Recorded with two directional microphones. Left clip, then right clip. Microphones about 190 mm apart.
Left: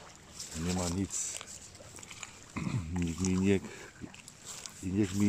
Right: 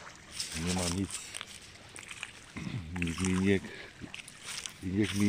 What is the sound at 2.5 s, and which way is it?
Dog, 10° left (ahead or behind).